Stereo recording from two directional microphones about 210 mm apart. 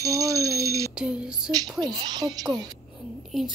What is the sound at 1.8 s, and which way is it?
Speech, 20° right (ahead or behind).